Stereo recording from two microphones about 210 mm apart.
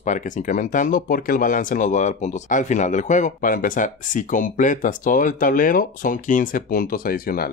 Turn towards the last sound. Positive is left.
turn(degrees=45)  # may be behind; listen again after turning